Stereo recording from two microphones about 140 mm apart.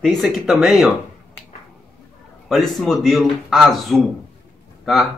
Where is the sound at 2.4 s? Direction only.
Centre (ahead or behind).